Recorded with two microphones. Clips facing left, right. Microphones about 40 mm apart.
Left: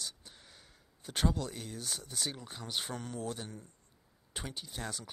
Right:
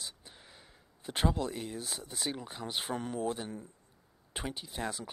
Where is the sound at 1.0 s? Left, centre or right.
Centre.